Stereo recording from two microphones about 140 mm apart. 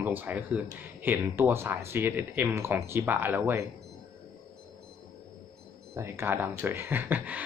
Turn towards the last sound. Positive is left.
turn(degrees=-10)  # may be behind; listen again after turning